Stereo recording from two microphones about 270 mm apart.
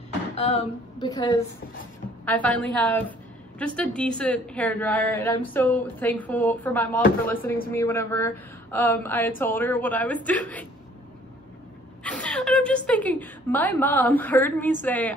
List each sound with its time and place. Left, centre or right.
0.4 s a woman's voice: left; by 10.7 s centre
12.0 s a woman's voice: centre